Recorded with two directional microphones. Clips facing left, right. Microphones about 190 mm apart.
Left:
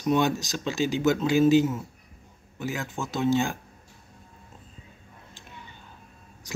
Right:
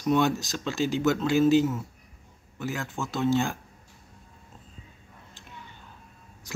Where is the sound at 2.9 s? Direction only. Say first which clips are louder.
Left 1 dB; 20° left (ahead or behind).